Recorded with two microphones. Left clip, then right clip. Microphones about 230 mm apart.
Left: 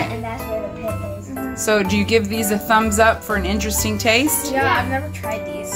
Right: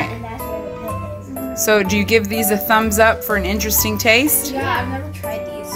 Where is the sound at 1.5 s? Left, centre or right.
Centre.